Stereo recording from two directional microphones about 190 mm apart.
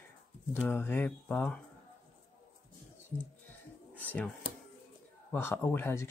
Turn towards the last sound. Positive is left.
turn(degrees=10)  # may be behind; listen again after turning